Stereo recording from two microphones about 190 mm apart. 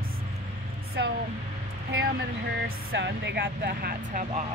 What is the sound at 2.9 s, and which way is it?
Speech, 65° right (ahead or behind).